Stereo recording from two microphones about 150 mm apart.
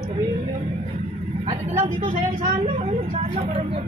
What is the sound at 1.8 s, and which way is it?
Vehicle, 40° right (ahead or behind).